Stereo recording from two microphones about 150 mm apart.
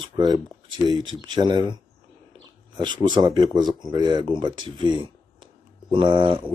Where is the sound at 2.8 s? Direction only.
30° right (ahead or behind).